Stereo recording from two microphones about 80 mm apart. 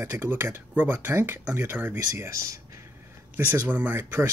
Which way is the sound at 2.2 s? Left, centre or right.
Right.